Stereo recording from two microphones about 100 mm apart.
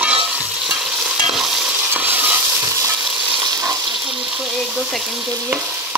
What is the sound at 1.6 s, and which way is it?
Stir, 20° right (ahead or behind).